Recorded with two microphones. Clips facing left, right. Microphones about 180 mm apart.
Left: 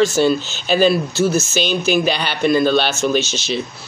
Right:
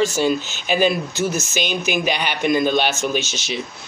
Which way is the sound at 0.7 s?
15° right (ahead or behind).